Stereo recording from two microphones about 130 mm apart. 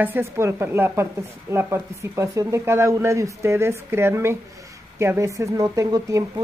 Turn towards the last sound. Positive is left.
turn(degrees=-25)  # may be behind; listen again after turning